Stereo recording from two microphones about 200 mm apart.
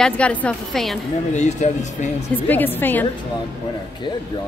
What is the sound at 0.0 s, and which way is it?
Speech, 5° left (ahead or behind).